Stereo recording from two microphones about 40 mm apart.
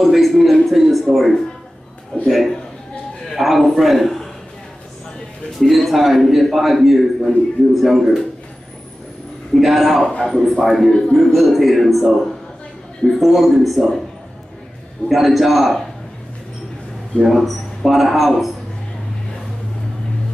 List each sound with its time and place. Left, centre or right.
0.0 s a man's voice: centre
5.6 s a man's voice: centre
9.5 s a man's voice: centre
10.0 s a man's voice: centre
10.9 s a man's voice: left
11.3 s a man's voice: centre
13.2 s a man's voice: centre
15.0 s a man's voice: centre
17.3 s a man's voice: centre